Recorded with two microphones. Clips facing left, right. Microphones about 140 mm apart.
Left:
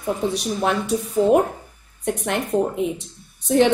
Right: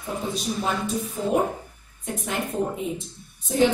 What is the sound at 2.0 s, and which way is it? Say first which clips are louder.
Speech: left 7 dB; 65° left (ahead or behind).